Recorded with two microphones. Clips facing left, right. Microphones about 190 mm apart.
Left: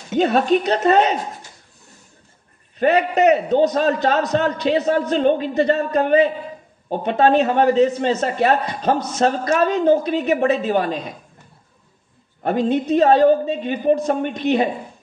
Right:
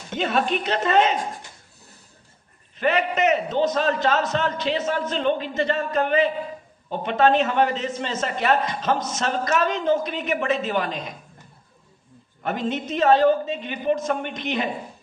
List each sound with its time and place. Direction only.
0.2 s a man's voice: 40° left (ahead or behind)
2.8 s a man's voice: 40° left (ahead or behind)
12.4 s a man's voice: 40° left (ahead or behind)